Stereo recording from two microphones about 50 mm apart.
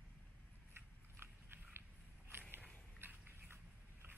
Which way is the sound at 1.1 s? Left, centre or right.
Right.